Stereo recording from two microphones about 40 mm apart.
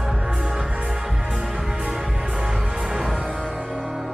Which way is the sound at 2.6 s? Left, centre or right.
Centre.